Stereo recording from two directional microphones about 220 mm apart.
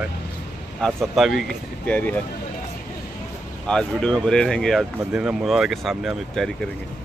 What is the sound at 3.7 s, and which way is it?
Speech, 5° left (ahead or behind).